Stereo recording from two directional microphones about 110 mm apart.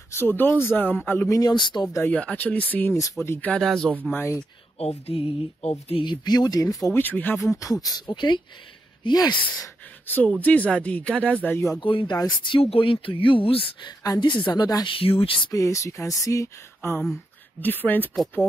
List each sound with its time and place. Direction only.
0.2 s speech: 20° left (ahead or behind)
1.3 s speech: 40° left (ahead or behind)
2.0 s speech: 15° left (ahead or behind)
4.0 s speech: 20° left (ahead or behind)
4.7 s speech: 65° left (ahead or behind)
6.0 s speech: 40° left (ahead or behind)
6.9 s speech: 15° left (ahead or behind)
7.5 s speech: 30° left (ahead or behind)
10.0 s speech: 15° left (ahead or behind)
11.8 s a woman's voice: 50° left (ahead or behind)
12.6 s a woman's voice: 55° left (ahead or behind)
15.0 s speech: 60° left (ahead or behind)
15.5 s speech: 30° left (ahead or behind)